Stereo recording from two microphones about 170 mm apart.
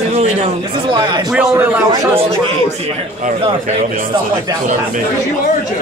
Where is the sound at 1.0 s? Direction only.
25° right (ahead or behind).